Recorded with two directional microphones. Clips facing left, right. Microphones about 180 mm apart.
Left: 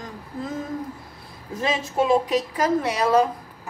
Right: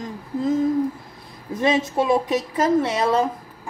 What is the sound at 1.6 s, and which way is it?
Speech, 20° right (ahead or behind).